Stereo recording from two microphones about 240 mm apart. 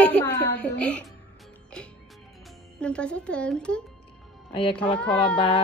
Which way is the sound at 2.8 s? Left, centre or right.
Centre.